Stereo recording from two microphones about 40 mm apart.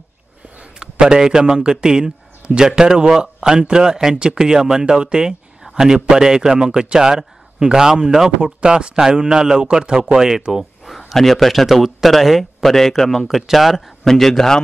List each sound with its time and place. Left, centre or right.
0.7 s a man's voice: centre
8.5 s a man's voice: right
11.1 s a man's voice: centre
13.5 s a man's voice: centre
14.0 s a man's voice: centre